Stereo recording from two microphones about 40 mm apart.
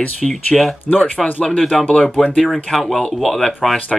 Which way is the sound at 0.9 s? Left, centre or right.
Left.